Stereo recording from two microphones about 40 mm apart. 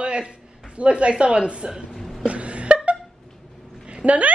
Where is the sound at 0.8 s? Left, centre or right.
Right.